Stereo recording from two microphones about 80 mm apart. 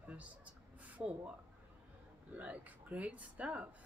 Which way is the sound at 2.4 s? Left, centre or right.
Centre.